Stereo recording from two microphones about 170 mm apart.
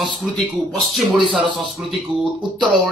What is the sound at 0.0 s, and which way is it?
Speech, centre (ahead or behind).